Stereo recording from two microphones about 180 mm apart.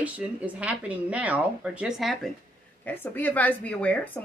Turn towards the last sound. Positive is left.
turn(degrees=10)  # may be behind; listen again after turning